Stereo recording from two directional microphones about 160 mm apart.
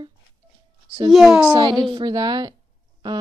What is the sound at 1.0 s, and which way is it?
Speech, 5° right (ahead or behind).